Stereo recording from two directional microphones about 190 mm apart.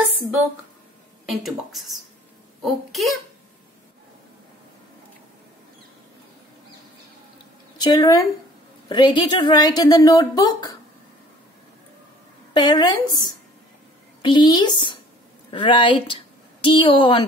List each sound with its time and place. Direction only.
1.2 s speech: centre (ahead or behind)
7.7 s speech: 20° left (ahead or behind)
12.5 s speech: 20° left (ahead or behind)